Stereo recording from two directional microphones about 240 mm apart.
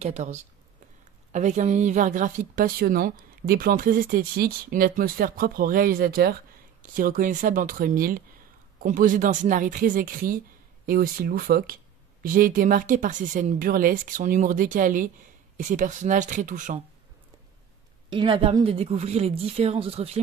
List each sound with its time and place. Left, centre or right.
0.0 s a woman's voice: right
18.1 s speech: right